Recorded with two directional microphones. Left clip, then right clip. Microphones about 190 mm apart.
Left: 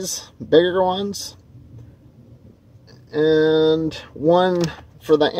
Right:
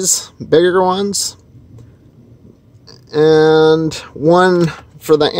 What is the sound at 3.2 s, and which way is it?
Speech, 30° right (ahead or behind).